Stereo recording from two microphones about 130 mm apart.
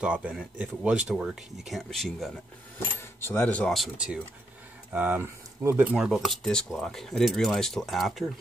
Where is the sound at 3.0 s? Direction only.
15° left (ahead or behind).